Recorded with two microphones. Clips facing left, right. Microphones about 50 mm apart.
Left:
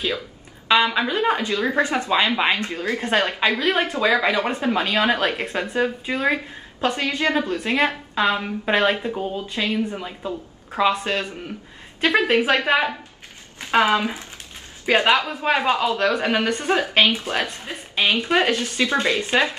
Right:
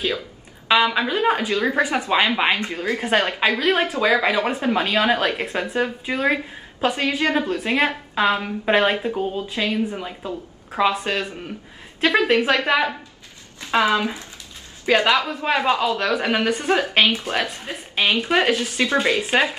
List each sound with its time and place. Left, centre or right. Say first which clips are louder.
0.7 s speech: even; centre
2.3 s speech: even; centre
13.6 s a woman's voice: left 1 dB; left
14.9 s a man's voice: even; centre
15.4 s speech: even; centre
18.8 s speech: even; centre